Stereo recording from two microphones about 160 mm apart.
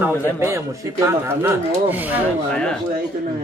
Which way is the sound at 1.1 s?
15° right (ahead or behind).